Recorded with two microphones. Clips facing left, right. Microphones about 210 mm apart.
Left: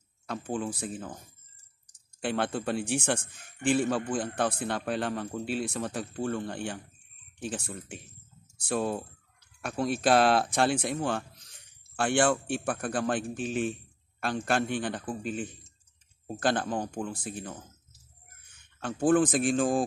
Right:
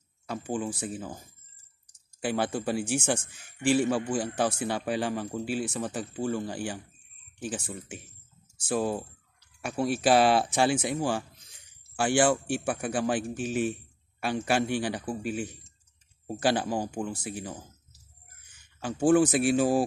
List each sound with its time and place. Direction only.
0.3 s speech: 5° right (ahead or behind)
2.2 s speech: 5° right (ahead or behind)
3.2 s speech: 55° left (ahead or behind)
4.1 s speech: 5° right (ahead or behind)
18.8 s speech: 5° right (ahead or behind)